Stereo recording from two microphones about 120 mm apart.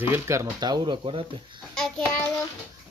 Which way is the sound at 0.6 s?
40° right (ahead or behind).